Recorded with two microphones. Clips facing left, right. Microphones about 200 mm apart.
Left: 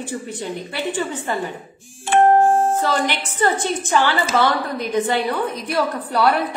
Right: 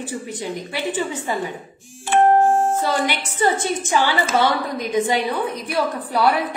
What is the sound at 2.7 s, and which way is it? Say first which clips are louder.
A woman's voice: left 1 dB; 15° right (ahead or behind).